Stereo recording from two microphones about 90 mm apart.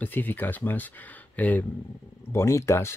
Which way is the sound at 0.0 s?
20° left (ahead or behind).